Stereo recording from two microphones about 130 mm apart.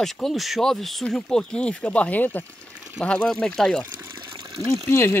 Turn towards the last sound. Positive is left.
turn(degrees=15)  # may be behind; listen again after turning